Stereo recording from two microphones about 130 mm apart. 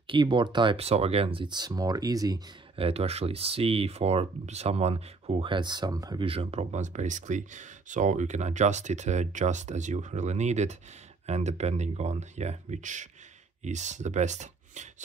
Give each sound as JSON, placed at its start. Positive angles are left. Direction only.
{"t": 0.0, "sound": "speech", "side_deg": -40}
{"t": 2.7, "sound": "speech", "side_deg": -50}
{"t": 6.2, "sound": "speech", "side_deg": -50}